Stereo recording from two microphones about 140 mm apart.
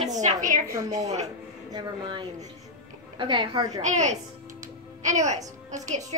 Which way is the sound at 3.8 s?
55° right (ahead or behind).